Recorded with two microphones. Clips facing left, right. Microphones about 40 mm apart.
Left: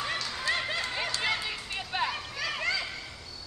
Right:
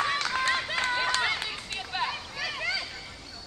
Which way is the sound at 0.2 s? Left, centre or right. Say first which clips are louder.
Right 4 dB; right.